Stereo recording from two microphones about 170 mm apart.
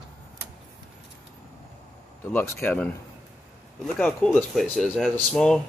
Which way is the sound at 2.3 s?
15° left (ahead or behind).